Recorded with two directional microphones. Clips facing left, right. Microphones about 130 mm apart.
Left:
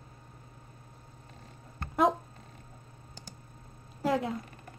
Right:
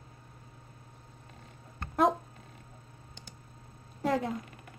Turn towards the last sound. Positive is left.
turn(degrees=0)  # may be behind; listen again after turning